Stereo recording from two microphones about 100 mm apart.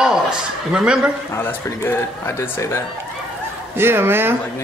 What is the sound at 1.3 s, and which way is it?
Speech, 25° left (ahead or behind).